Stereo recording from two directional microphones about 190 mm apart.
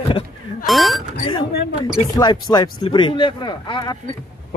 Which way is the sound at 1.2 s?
25° left (ahead or behind).